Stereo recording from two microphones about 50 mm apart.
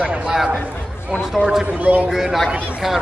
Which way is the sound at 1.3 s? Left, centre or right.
Centre.